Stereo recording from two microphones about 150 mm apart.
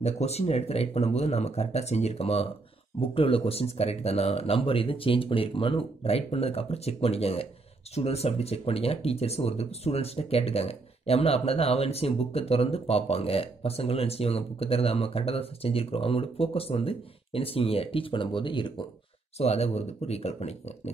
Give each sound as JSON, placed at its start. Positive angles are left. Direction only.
{"t": 0.0, "sound": "speech", "side_deg": 45}
{"t": 19.3, "sound": "speech", "side_deg": 45}